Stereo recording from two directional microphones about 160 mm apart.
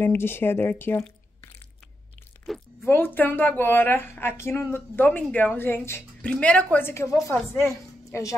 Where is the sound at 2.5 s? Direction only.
Centre (ahead or behind).